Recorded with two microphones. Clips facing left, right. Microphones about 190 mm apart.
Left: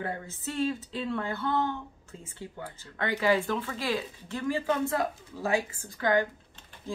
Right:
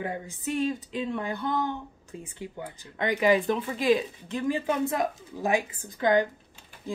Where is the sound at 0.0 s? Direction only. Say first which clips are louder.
Right 2 dB; 15° right (ahead or behind).